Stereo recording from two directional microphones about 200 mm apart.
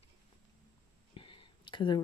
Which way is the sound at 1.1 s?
25° left (ahead or behind).